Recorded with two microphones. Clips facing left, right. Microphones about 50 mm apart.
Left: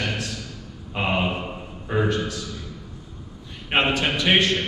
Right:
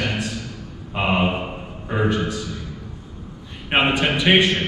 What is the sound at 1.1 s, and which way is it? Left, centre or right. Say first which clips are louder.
A man's voice: right 4 dB; right.